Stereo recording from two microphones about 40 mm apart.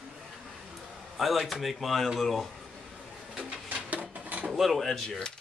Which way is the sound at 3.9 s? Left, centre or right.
Right.